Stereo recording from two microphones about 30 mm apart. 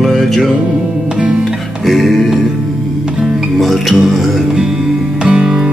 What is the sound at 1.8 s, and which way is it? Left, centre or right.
Music, centre.